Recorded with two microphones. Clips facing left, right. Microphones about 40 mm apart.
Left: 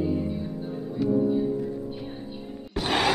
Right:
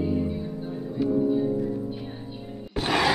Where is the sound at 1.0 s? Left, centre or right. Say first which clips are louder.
Even; centre.